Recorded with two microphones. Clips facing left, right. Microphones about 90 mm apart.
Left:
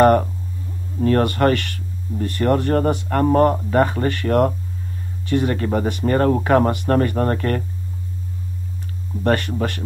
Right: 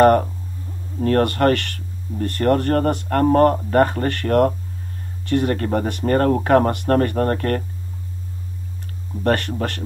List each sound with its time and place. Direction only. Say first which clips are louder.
1.0 s speech: even; 45° right (ahead or behind)
9.2 s speech: even; 45° right (ahead or behind)